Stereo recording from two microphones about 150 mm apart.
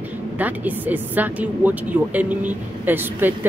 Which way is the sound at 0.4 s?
10° right (ahead or behind).